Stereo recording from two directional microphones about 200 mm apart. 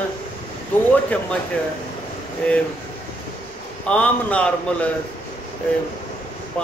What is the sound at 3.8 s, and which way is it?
A man's voice, 5° left (ahead or behind).